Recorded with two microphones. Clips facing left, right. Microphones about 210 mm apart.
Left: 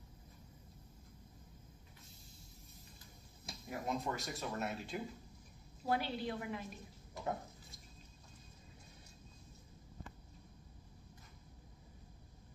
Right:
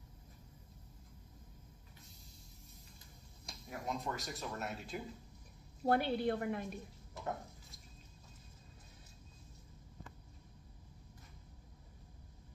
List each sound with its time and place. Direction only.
3.4 s speech: centre (ahead or behind)
5.9 s a woman's voice: 55° right (ahead or behind)
7.2 s water tap: centre (ahead or behind)